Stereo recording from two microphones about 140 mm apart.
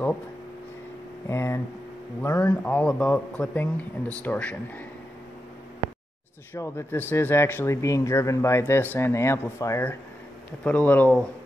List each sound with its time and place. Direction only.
1.3 s speech: 15° left (ahead or behind)
6.5 s speech: 15° left (ahead or behind)